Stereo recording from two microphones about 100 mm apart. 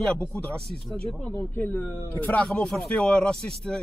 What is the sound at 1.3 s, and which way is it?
A man's voice, 20° left (ahead or behind).